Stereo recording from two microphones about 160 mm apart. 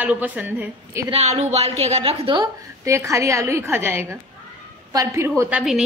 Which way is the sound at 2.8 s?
20° right (ahead or behind).